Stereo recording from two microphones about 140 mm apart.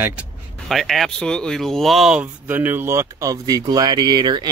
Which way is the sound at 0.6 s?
Centre (ahead or behind).